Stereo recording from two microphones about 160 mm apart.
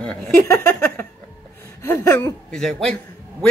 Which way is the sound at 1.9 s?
20° left (ahead or behind).